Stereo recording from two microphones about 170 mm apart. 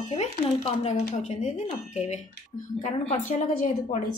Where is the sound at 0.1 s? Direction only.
35° left (ahead or behind).